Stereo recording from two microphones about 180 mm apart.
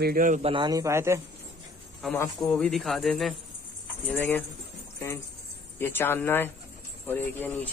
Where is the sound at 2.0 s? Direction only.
Centre (ahead or behind).